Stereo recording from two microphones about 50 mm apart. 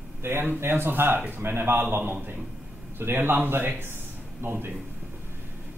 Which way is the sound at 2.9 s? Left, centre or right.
Right.